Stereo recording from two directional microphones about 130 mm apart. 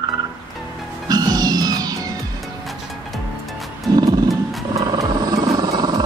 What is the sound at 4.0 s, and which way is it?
Wild animals, 30° right (ahead or behind).